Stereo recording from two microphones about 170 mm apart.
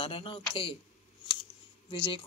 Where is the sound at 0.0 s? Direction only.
30° left (ahead or behind).